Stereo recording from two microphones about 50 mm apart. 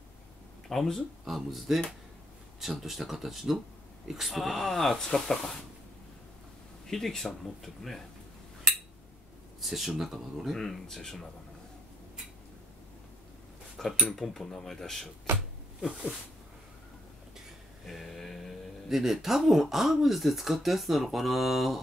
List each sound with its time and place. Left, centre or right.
0.7 s speech: centre
1.2 s speech: centre
6.9 s speech: centre
9.6 s speech: centre
13.8 s speech: centre
17.8 s a sound: centre
18.9 s speech: centre